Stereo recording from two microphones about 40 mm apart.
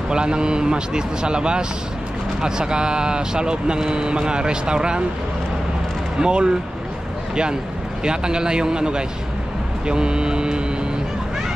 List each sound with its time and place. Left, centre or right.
0.1 s speech: right
6.1 s speech: right
8.0 s speech: right